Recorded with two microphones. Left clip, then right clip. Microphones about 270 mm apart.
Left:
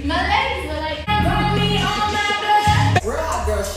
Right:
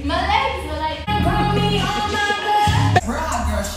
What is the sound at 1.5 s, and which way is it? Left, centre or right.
Music, centre.